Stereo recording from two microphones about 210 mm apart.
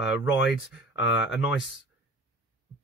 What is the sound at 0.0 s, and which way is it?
Speech, 5° right (ahead or behind).